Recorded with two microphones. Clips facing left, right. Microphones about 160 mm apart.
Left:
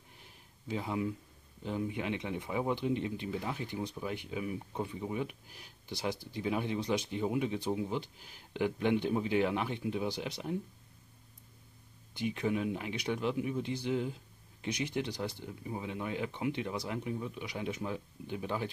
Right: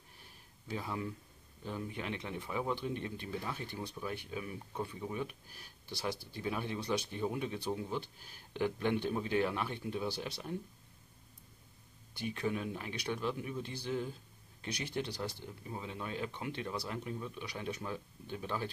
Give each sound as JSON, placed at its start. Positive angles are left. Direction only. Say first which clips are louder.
{"t": 0.2, "sound": "a sound", "louder": "left 6 dB", "side_deg": 20}
{"t": 1.6, "sound": "speech", "louder": "left 5 dB", "side_deg": 15}
{"t": 12.1, "sound": "speech", "louder": "left 3 dB", "side_deg": 20}